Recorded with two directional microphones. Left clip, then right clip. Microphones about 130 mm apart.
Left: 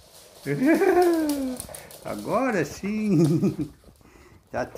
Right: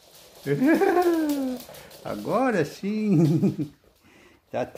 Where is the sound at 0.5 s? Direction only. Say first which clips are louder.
Even; 15° right (ahead or behind).